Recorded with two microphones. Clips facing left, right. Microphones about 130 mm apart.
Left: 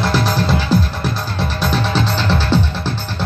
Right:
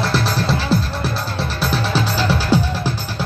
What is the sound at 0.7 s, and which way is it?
Music, centre (ahead or behind).